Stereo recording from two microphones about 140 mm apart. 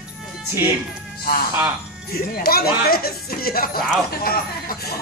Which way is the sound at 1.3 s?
90° left.